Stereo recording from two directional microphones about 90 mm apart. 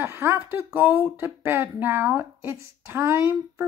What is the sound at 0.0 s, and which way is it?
Speech, 25° right (ahead or behind).